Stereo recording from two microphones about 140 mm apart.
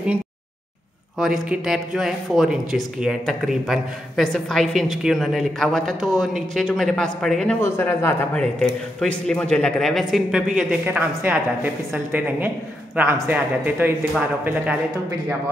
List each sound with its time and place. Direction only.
1.1 s speech: centre (ahead or behind)
7.6 s a man's voice: 20° left (ahead or behind); by 13.9 s 15° right (ahead or behind)